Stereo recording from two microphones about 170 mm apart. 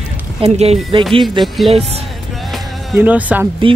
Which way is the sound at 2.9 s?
10° right (ahead or behind).